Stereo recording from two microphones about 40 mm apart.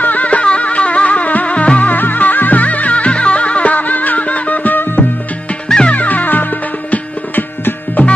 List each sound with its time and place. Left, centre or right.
0.0 s music: left